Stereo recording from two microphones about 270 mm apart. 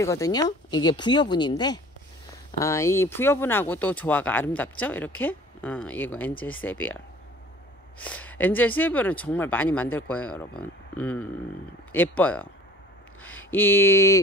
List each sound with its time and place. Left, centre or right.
0.0 s speech: centre
8.0 s speech: centre
13.5 s speech: centre